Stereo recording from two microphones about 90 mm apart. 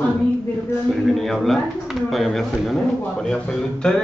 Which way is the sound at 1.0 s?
Centre (ahead or behind).